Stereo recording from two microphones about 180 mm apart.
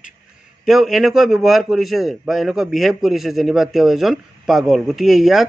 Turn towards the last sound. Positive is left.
turn(degrees=0)  # may be behind; listen again after turning